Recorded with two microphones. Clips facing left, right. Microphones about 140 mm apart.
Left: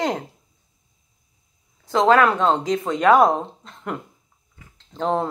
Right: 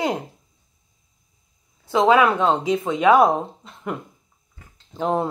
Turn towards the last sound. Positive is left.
turn(degrees=-5)  # may be behind; listen again after turning